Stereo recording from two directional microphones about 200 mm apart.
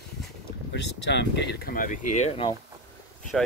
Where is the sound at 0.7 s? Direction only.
60° left (ahead or behind); by 2.5 s 35° left (ahead or behind).